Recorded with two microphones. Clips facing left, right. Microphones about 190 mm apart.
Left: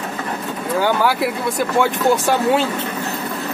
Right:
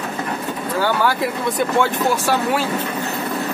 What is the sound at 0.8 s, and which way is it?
Speech, 10° left (ahead or behind).